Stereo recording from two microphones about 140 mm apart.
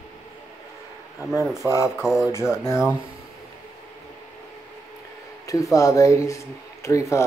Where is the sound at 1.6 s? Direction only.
15° right (ahead or behind).